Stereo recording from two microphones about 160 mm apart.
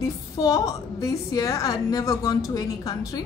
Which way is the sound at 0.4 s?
20° left (ahead or behind).